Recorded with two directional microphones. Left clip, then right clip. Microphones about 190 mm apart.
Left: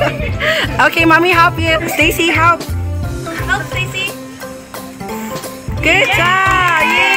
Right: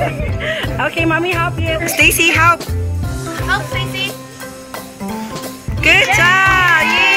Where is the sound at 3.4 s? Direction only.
15° right (ahead or behind).